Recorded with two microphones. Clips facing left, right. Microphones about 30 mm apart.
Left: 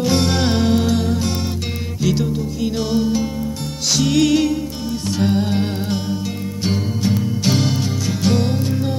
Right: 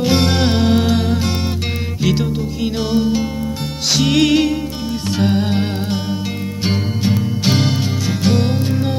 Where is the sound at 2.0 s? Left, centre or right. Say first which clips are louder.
Right 1 dB; right.